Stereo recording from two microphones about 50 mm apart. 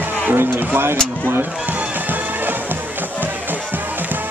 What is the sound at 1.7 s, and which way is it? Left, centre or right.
Music, right.